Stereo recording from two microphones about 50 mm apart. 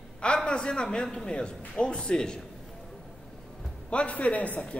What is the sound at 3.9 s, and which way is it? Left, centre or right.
Speech, left.